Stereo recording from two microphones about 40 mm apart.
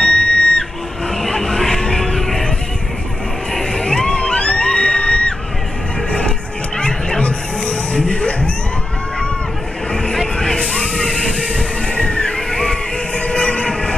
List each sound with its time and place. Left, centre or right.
0.0 s music: left
1.1 s music: centre
3.5 s music: centre
6.8 s music: centre
7.6 s a sound: left
10.1 s music: centre
11.4 s music: left
12.4 s a sound: centre
13.1 s train: left